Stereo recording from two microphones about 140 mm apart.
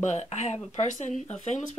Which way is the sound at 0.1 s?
55° left (ahead or behind).